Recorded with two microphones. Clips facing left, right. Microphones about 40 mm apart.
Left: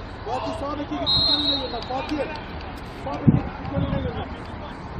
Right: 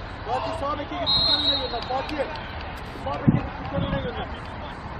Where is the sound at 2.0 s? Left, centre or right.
Centre.